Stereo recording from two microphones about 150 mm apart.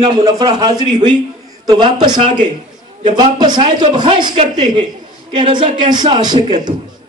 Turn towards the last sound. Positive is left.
turn(degrees=-30)  # may be behind; listen again after turning